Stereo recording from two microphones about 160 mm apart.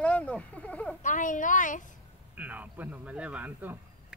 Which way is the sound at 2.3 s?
10° right (ahead or behind).